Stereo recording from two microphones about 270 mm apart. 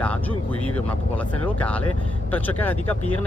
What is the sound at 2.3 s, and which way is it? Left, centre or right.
Speech, centre.